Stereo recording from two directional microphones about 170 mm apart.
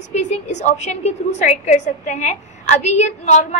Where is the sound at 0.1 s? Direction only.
45° left (ahead or behind).